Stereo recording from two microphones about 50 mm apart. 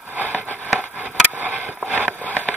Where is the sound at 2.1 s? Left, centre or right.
Right.